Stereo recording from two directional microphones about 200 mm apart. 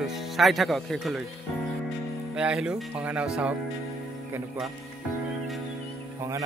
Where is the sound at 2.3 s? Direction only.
5° right (ahead or behind).